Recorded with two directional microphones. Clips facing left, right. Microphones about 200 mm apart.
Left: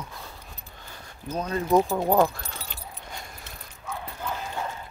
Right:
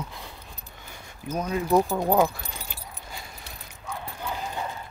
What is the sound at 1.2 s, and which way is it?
Speech, 10° right (ahead or behind).